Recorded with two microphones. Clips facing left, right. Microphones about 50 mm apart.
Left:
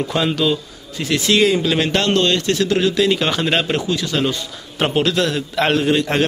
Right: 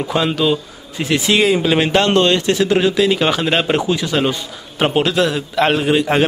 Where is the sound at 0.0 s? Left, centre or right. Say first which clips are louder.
Right 1 dB; centre.